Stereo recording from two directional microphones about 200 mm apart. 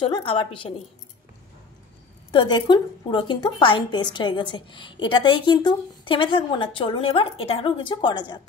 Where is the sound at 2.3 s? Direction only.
25° left (ahead or behind).